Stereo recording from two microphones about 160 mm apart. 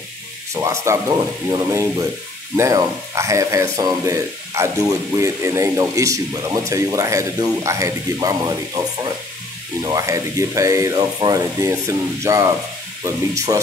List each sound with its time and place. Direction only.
0.6 s speech: 20° right (ahead or behind)